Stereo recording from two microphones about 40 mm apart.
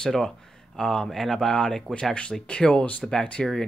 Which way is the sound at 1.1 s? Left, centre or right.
Centre.